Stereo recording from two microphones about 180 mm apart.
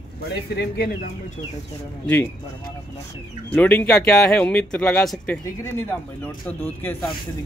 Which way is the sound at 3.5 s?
10° left (ahead or behind).